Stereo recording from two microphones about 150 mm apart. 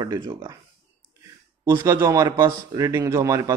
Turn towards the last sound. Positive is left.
turn(degrees=-20)  # may be behind; listen again after turning